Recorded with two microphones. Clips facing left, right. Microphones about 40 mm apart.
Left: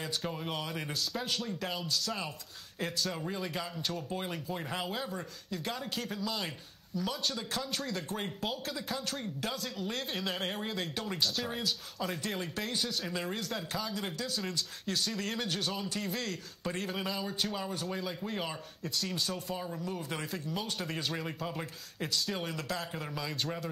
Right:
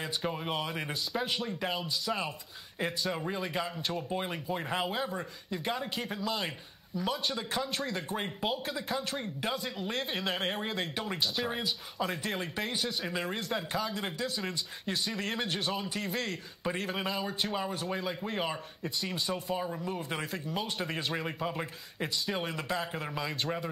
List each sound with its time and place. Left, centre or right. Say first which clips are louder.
0.2 s a man's voice: right 3 dB; centre